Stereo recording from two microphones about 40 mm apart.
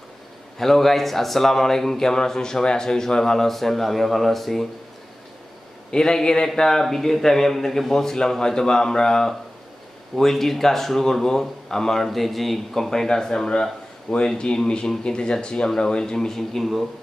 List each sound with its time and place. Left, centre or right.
0.6 s speech: centre
5.9 s speech: centre